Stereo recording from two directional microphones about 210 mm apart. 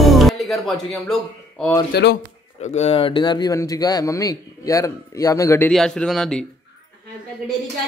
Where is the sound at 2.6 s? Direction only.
30° left (ahead or behind); by 5.7 s 15° left (ahead or behind).